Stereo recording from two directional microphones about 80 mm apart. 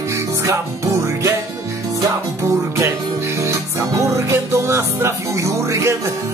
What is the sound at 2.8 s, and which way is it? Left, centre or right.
Music, right.